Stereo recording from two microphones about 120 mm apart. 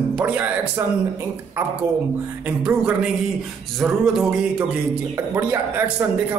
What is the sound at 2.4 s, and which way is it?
A man's voice, 10° right (ahead or behind).